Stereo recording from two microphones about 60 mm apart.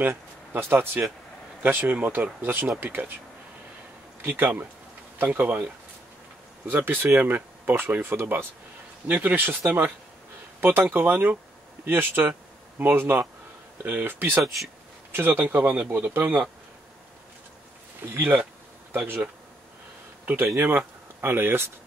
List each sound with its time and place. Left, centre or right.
0.0 s speech: right
4.2 s speech: right
6.7 s speech: right
18.1 s speech: right
20.5 s speech: right